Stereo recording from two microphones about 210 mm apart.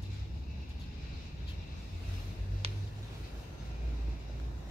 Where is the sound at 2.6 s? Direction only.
30° right (ahead or behind).